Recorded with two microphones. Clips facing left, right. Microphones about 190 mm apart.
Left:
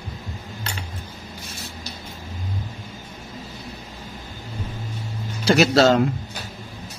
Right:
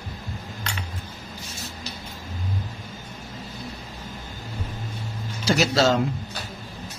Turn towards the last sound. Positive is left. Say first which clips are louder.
# left 5 dB
turn(degrees=60)  # may be behind; listen again after turning